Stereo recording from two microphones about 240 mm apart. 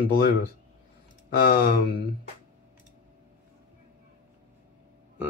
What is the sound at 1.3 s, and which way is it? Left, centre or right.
Speech, left.